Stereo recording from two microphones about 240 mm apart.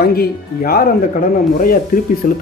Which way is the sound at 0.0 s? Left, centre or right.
Left.